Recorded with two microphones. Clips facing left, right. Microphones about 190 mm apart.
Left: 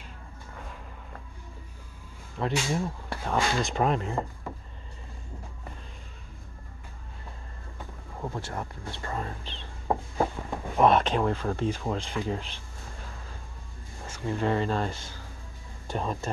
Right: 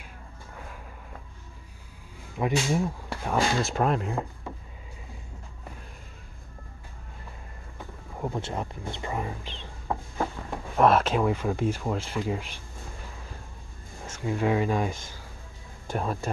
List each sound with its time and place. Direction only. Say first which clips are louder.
2.3 s speech: right 3 dB; 10° right (ahead or behind)
8.2 s speech: right 3 dB; 20° right (ahead or behind)
9.8 s a sound: left 3 dB; 20° left (ahead or behind)
10.5 s speech: right 1 dB; centre (ahead or behind)
14.1 s speech: right 2 dB; 5° right (ahead or behind)